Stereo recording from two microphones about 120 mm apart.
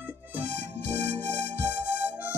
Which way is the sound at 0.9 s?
15° left (ahead or behind).